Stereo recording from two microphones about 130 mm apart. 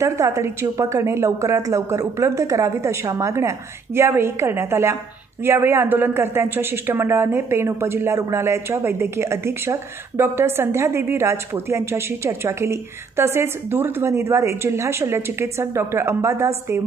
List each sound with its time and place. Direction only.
0.0 s speech: 25° right (ahead or behind)